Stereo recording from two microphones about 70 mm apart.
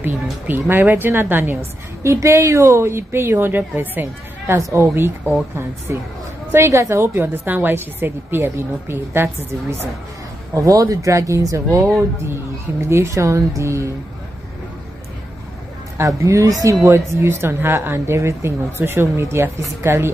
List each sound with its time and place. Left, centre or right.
0.0 s a woman's voice: right
2.0 s speech: right
7.2 s speech: right
10.5 s speech: right
16.0 s speech: right
16.8 s speech: right